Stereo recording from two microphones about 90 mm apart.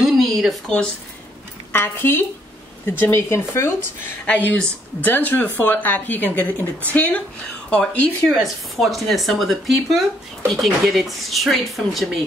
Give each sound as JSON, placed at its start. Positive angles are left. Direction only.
{"t": 0.0, "sound": "a sound", "side_deg": 0}
{"t": 1.7, "sound": "speech", "side_deg": 25}
{"t": 8.3, "sound": "speech", "side_deg": 0}